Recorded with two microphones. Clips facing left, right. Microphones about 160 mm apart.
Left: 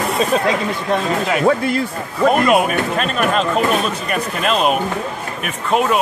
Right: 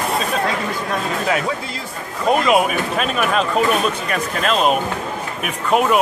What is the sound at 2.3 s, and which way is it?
Speech, centre (ahead or behind).